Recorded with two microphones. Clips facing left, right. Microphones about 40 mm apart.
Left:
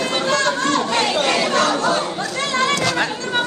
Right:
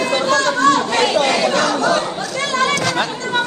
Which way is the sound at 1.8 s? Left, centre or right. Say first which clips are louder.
Right 2 dB; right.